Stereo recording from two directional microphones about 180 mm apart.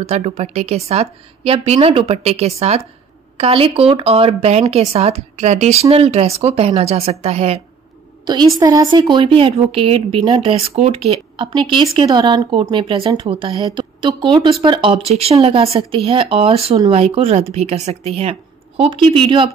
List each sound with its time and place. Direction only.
0.0 s speech: 35° right (ahead or behind)
8.5 s speech: 20° right (ahead or behind)